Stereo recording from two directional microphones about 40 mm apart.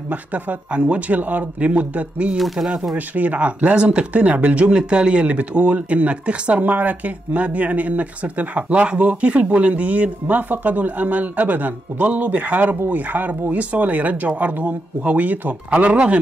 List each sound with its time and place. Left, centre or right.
0.1 s speech: right
0.7 s speech: right
2.3 s speech: centre
3.2 s speech: right
12.6 s speech: right
13.0 s speech: right
15.7 s speech: right